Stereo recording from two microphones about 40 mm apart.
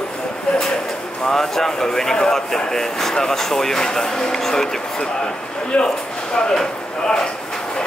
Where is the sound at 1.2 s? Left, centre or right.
Centre.